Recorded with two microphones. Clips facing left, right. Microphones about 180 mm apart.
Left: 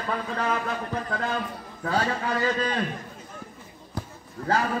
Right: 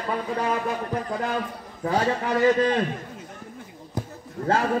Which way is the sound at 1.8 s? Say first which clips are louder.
Right 3 dB; 20° right (ahead or behind).